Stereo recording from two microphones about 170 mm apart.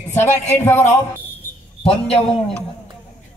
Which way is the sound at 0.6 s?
15° left (ahead or behind).